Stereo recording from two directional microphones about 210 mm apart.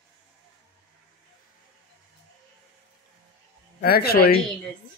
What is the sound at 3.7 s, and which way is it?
Speech, 45° left (ahead or behind).